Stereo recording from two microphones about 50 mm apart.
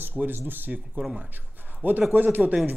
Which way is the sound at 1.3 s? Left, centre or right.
Right.